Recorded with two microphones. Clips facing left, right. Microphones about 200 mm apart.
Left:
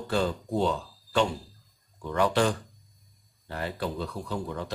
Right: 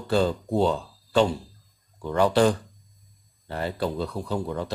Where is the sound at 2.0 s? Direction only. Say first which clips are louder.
Right 5 dB; 30° right (ahead or behind).